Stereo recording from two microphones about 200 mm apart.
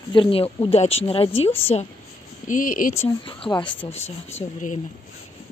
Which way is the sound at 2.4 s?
40° left (ahead or behind).